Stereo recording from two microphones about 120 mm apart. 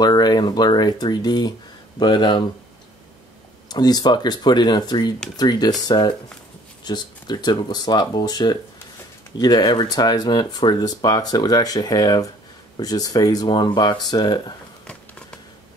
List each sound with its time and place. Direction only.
0.0 s speech: 35° left (ahead or behind)
3.6 s speech: 35° left (ahead or behind)